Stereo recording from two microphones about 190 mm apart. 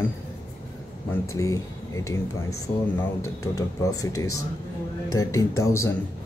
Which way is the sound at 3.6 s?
20° left (ahead or behind).